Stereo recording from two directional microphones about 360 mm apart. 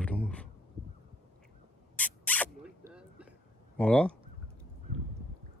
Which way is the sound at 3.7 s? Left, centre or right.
Centre.